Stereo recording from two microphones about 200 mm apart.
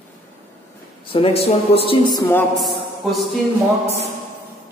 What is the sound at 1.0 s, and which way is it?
Speech, 30° left (ahead or behind).